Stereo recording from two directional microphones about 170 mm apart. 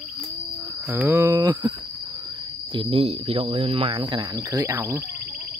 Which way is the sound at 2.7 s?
30° right (ahead or behind).